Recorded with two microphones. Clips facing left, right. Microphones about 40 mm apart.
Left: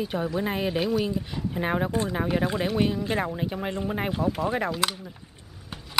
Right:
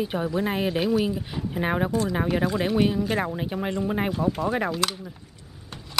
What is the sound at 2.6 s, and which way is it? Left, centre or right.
Speech, centre.